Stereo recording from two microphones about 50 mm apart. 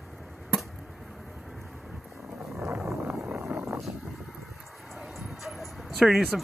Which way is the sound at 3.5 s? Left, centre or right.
Right.